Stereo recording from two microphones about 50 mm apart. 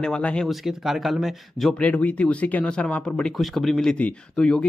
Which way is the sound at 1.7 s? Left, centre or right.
Left.